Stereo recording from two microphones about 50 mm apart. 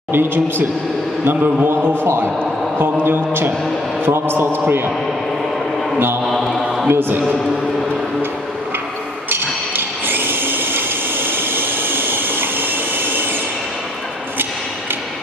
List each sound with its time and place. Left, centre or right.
0.1 s a man's voice: right
6.2 s mantra: centre
6.9 s a man's voice: right
9.3 s tools: right